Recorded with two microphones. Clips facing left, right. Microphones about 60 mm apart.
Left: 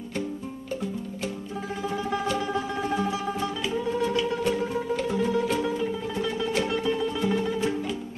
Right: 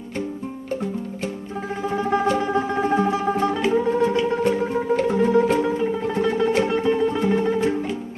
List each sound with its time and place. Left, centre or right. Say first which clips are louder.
1.9 s music: right 8 dB; right
6.0 s music: right 8 dB; right